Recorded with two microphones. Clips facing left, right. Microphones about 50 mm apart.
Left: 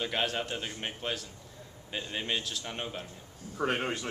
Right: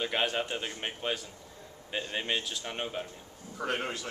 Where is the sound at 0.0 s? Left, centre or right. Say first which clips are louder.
Right 1 dB; centre.